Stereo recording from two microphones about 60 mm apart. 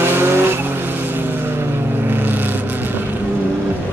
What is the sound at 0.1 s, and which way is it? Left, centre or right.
Vehicle, right.